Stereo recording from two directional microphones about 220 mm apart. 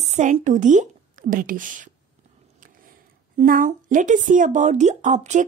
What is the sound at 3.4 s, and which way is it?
Speech, 40° right (ahead or behind).